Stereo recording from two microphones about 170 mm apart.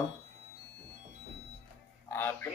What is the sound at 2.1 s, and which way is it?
Fowl, 10° left (ahead or behind).